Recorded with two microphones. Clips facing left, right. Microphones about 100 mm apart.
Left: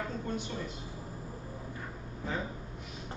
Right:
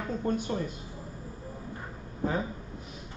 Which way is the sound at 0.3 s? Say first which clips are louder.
Right 9 dB; 45° right (ahead or behind).